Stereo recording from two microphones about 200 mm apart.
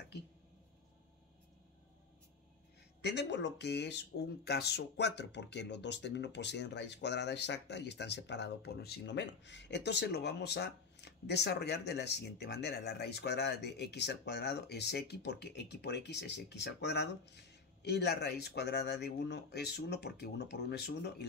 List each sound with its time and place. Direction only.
3.0 s speech: 60° left (ahead or behind)